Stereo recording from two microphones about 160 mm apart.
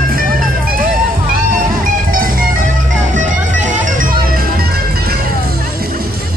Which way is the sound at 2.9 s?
50° right (ahead or behind).